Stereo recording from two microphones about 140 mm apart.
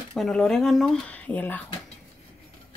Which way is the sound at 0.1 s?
5° left (ahead or behind).